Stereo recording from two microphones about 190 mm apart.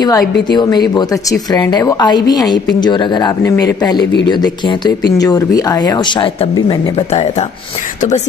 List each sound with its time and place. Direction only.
0.0 s speech: 20° left (ahead or behind)